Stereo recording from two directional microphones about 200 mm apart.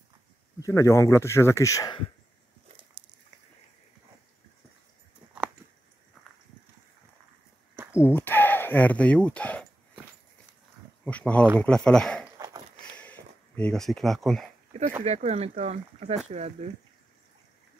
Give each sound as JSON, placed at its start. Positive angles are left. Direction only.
{"t": 0.6, "sound": "speech", "side_deg": 15}
{"t": 5.2, "sound": "a sound", "side_deg": -25}
{"t": 7.9, "sound": "speech", "side_deg": 10}
{"t": 11.1, "sound": "speech", "side_deg": 5}
{"t": 13.6, "sound": "speech", "side_deg": 5}
{"t": 14.7, "sound": "speech", "side_deg": -35}